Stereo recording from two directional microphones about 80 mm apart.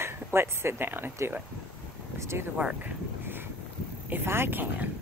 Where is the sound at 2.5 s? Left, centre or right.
Centre.